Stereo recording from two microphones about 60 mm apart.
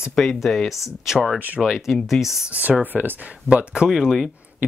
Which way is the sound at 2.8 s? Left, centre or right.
Right.